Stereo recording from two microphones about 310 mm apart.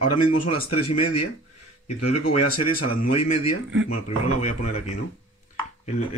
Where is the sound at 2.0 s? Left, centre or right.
Left.